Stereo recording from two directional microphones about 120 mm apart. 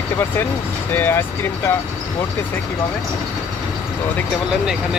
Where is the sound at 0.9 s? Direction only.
15° left (ahead or behind).